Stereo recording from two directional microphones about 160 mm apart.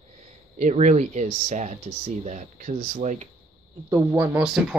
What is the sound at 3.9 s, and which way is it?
Speech, 15° right (ahead or behind).